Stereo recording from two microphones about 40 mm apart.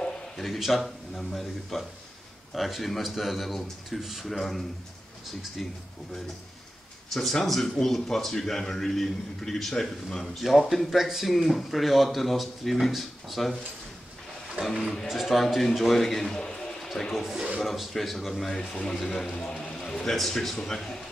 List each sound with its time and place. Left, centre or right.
0.4 s speech: centre
7.1 s speech: centre
11.0 s speech: centre
14.6 s speech: centre
17.2 s a man's voice: centre
18.5 s speech: centre
19.3 s speech: left
19.8 s a man's voice: centre